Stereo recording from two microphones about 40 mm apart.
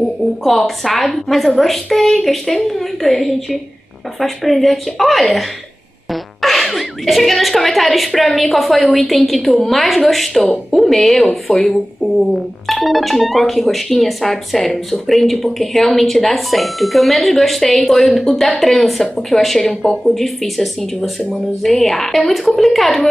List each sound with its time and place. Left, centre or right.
0.4 s speech: centre
2.0 s speech: left
2.2 s speech: centre
6.4 s gasp: centre
7.5 s a woman's voice: centre